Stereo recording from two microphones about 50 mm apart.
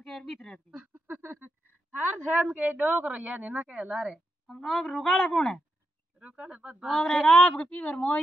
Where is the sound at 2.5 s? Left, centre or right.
Right.